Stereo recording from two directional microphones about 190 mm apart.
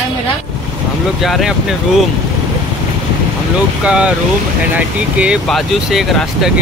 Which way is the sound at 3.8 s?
5° right (ahead or behind).